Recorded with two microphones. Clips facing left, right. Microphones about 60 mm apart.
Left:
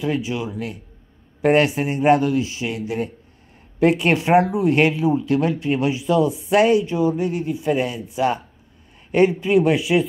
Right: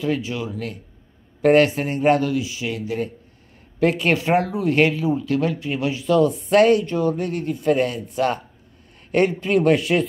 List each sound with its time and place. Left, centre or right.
0.0 s speech: centre
3.8 s speech: left; by 10.0 s centre